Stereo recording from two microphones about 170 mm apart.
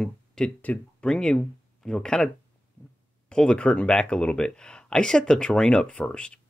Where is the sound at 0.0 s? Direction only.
5° left (ahead or behind).